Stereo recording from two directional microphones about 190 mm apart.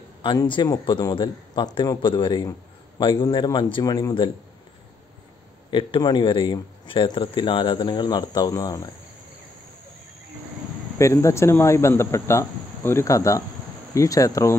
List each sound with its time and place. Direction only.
0.2 s speech: 25° left (ahead or behind)
5.7 s speech: 25° left (ahead or behind)
11.0 s speech: 15° left (ahead or behind)